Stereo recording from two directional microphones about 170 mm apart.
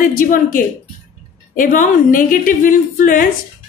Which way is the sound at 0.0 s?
55° left (ahead or behind).